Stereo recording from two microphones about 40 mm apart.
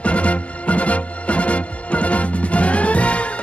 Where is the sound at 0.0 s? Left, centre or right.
Left.